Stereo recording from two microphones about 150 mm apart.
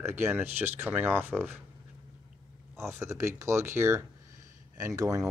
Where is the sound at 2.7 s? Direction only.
20° right (ahead or behind).